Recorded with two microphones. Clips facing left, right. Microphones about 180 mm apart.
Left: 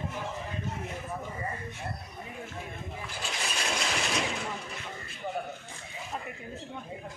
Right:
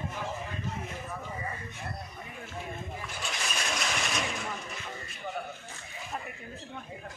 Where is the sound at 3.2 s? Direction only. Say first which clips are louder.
Left 1 dB; 30° left (ahead or behind).